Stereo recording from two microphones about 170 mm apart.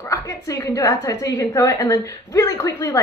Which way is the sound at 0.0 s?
20° left (ahead or behind).